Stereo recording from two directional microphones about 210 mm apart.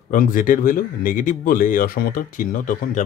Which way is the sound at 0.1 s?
40° left (ahead or behind).